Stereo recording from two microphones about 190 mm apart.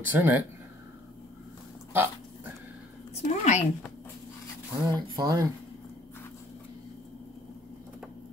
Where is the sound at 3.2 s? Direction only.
35° left (ahead or behind).